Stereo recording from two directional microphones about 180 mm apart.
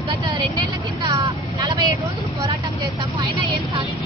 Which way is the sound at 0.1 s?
25° right (ahead or behind).